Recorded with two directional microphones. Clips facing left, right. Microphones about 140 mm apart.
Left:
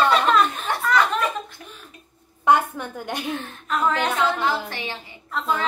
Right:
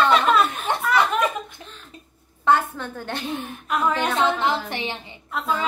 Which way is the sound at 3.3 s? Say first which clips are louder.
Right 1 dB; 10° right (ahead or behind).